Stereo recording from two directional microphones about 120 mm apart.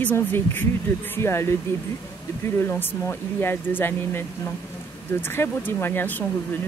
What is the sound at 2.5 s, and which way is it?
Speech, 20° left (ahead or behind).